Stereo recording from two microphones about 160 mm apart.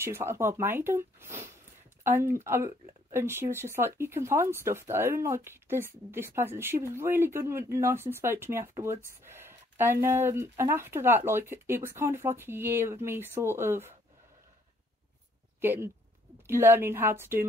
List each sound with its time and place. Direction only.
0.0 s speech: 15° right (ahead or behind)
15.6 s speech: 15° right (ahead or behind)